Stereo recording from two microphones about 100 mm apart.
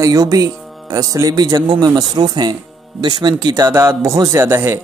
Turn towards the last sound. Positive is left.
turn(degrees=-25)  # may be behind; listen again after turning